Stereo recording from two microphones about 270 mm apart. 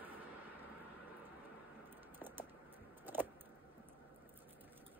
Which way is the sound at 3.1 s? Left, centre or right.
Centre.